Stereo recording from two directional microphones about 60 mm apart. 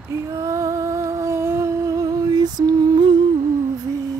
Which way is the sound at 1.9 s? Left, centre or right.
Right.